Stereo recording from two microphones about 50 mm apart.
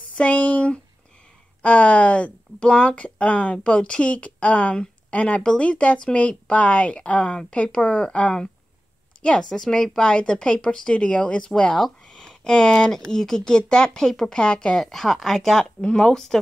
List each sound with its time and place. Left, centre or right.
0.1 s a woman's voice: left
9.5 s speech: centre
14.8 s speech: centre